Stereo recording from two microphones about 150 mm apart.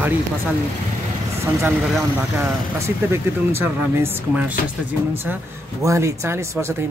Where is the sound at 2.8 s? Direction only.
15° right (ahead or behind).